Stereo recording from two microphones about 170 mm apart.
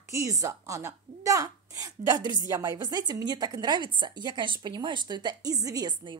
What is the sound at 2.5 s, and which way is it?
A woman's voice, 20° right (ahead or behind).